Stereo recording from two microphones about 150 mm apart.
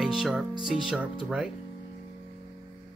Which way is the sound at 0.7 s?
5° right (ahead or behind).